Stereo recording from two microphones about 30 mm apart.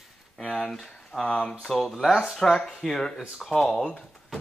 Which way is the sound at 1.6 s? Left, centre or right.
Centre.